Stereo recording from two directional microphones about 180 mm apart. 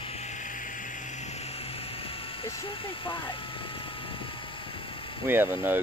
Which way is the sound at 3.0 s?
30° left (ahead or behind).